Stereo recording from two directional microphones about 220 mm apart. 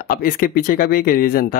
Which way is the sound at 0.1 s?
40° left (ahead or behind).